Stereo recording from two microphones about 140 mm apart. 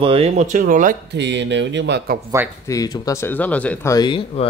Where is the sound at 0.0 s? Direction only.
45° right (ahead or behind).